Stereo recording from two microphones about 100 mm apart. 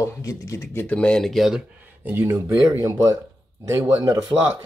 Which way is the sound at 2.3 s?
35° right (ahead or behind).